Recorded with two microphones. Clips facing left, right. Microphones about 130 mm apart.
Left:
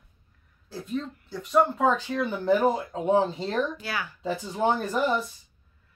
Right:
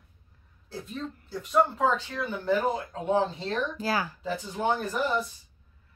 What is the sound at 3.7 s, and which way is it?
Speech, 35° right (ahead or behind).